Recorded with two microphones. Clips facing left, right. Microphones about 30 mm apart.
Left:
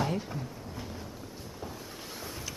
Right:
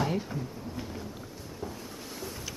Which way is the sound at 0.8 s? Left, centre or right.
Centre.